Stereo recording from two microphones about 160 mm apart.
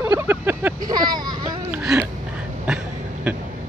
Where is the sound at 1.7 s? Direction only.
10° right (ahead or behind).